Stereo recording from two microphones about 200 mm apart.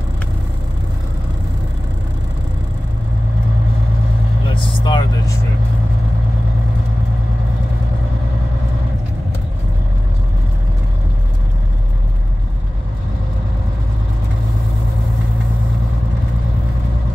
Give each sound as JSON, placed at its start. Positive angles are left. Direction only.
{"t": 4.6, "sound": "vehicle", "side_deg": 25}